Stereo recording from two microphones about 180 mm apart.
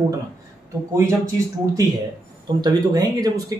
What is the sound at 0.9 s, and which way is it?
Speech, 15° right (ahead or behind).